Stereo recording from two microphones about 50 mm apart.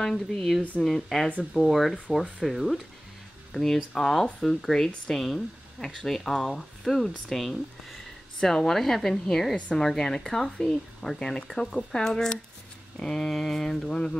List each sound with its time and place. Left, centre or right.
0.0 s speech: centre
1.4 s speech: centre
1.7 s speech: centre